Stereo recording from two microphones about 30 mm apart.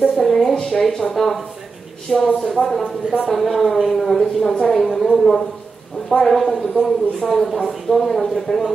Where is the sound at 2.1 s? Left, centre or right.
Left.